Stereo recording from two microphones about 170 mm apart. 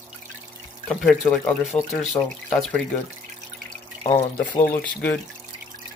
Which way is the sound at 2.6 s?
5° left (ahead or behind).